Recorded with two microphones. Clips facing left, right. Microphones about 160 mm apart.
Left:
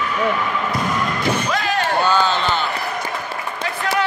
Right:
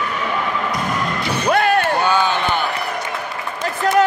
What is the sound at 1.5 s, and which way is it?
Slam, 60° right (ahead or behind).